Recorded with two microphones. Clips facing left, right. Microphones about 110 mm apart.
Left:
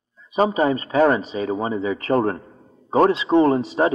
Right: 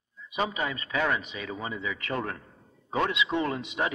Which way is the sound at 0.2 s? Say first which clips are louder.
Left 11 dB; 40° left (ahead or behind).